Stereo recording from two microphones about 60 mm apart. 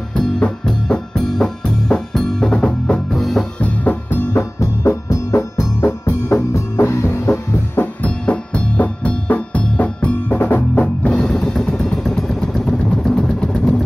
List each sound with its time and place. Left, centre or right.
0.1 s music: centre
2.1 s drum: centre
2.6 s drum: centre
3.2 s music: centre
3.6 s music: left
4.4 s music: left
7.8 s music: left